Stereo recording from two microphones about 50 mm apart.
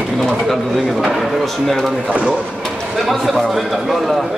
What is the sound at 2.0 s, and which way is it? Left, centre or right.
Speech, right.